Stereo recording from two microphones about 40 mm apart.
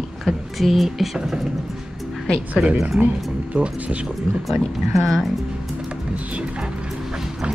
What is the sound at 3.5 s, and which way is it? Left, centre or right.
Speech, right.